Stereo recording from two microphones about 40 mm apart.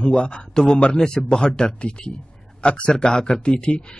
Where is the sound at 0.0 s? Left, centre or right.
Left.